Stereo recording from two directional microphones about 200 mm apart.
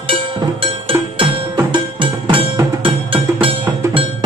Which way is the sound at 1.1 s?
25° right (ahead or behind).